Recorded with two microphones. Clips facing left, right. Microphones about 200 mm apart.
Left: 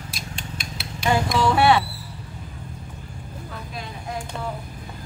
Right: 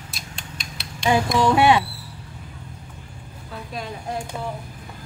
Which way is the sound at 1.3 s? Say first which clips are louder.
Right 1 dB; 15° right (ahead or behind).